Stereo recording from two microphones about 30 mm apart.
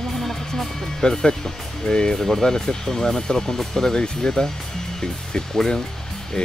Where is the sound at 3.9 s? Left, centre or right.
Left.